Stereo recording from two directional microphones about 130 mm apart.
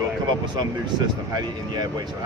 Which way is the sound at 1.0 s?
30° right (ahead or behind).